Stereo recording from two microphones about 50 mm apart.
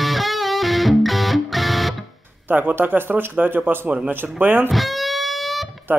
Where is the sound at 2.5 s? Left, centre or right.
Right.